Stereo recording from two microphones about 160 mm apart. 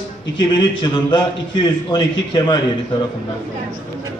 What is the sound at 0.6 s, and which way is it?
A man's voice, 30° left (ahead or behind).